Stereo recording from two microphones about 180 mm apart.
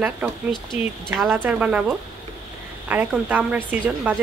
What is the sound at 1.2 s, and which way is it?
Speech, 10° right (ahead or behind).